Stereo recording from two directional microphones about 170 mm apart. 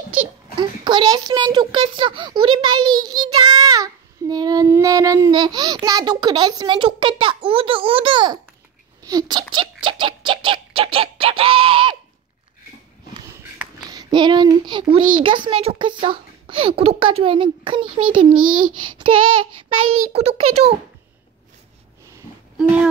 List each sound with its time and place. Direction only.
0.6 s a child's voice: 25° right (ahead or behind)
13.3 s a sound: 10° right (ahead or behind)
13.7 s a child's voice: 25° right (ahead or behind)